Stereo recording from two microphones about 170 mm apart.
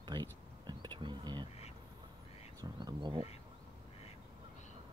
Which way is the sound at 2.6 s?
25° right (ahead or behind).